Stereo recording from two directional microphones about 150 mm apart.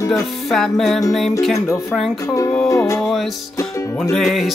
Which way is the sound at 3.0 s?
Centre (ahead or behind).